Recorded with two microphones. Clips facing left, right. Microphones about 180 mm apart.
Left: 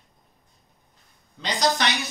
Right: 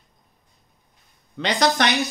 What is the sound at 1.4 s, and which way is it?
Speech, 65° right (ahead or behind).